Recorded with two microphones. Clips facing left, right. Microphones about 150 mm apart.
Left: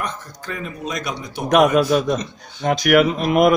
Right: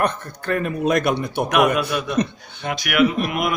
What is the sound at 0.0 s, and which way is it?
A man's voice, 60° right (ahead or behind).